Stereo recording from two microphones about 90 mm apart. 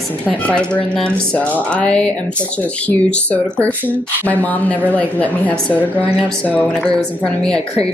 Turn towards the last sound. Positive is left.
turn(degrees=15)  # may be behind; listen again after turning